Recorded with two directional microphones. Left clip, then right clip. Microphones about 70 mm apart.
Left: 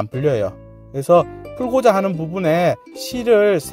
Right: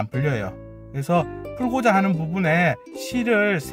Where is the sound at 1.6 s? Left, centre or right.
Left.